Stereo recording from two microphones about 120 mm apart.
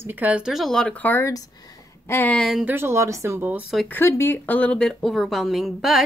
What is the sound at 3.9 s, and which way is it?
Speech, 20° left (ahead or behind).